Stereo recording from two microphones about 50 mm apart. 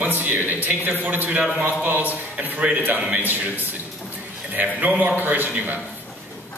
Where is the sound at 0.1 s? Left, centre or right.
Right.